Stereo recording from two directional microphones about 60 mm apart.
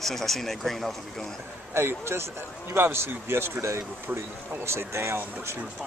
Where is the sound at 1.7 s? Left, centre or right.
Right.